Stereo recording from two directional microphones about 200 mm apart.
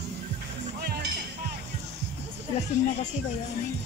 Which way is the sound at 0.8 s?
50° right (ahead or behind).